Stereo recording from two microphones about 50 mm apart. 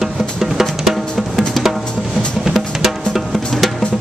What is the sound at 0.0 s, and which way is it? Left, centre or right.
Drum, centre.